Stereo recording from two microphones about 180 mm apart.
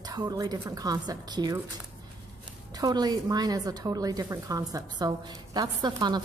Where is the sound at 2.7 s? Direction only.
20° right (ahead or behind).